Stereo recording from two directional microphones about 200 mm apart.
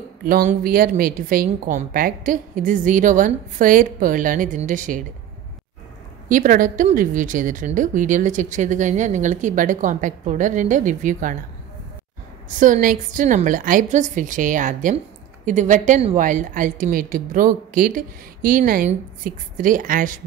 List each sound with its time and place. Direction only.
0.2 s a woman's voice: 45° right (ahead or behind)
6.2 s a woman's voice: 40° right (ahead or behind)
12.4 s a woman's voice: 40° right (ahead or behind)